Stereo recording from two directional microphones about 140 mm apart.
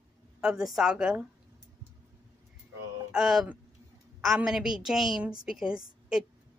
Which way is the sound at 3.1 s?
Centre (ahead or behind).